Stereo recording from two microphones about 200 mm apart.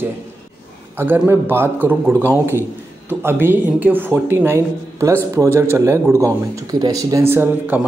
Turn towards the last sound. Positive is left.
turn(degrees=-10)  # may be behind; listen again after turning